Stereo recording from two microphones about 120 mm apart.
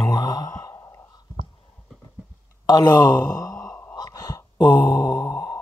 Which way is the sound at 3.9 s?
30° left (ahead or behind).